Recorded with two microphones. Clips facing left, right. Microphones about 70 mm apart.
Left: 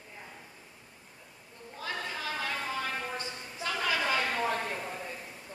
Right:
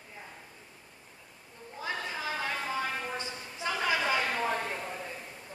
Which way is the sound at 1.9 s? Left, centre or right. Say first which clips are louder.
Even; centre.